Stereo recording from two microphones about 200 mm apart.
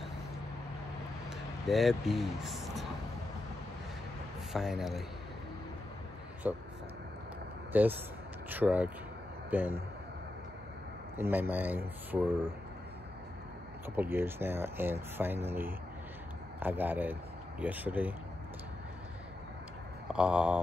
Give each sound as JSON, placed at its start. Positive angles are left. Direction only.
{"t": 1.7, "sound": "speech", "side_deg": 0}
{"t": 4.5, "sound": "speech", "side_deg": 0}
{"t": 6.4, "sound": "speech", "side_deg": -5}
{"t": 7.7, "sound": "speech", "side_deg": -10}
{"t": 11.1, "sound": "speech", "side_deg": -10}
{"t": 13.9, "sound": "speech", "side_deg": -10}
{"t": 20.1, "sound": "speech", "side_deg": -5}